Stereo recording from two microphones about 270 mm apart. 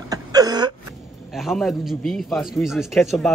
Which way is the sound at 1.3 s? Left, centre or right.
Centre.